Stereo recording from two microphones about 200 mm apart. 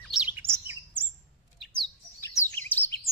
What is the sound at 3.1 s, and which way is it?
Bird, centre (ahead or behind).